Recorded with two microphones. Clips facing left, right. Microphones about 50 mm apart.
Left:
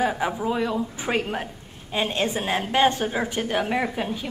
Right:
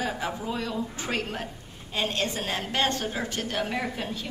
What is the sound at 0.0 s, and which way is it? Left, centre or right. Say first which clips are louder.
A woman's voice: left 6 dB; centre.